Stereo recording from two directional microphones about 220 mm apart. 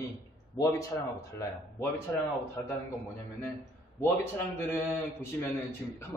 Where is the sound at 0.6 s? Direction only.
15° left (ahead or behind).